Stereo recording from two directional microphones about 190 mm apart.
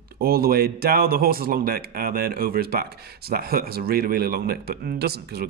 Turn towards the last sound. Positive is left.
turn(degrees=-55)  # may be behind; listen again after turning